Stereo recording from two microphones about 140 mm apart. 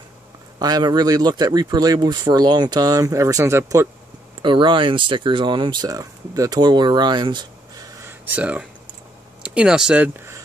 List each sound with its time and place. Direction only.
0.6 s a man's voice: 30° right (ahead or behind)
4.4 s speech: 35° right (ahead or behind)
8.1 s speech: 10° right (ahead or behind)